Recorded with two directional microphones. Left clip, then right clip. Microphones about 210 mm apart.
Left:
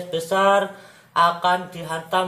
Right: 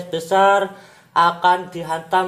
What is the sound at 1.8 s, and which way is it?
Speech, 45° right (ahead or behind).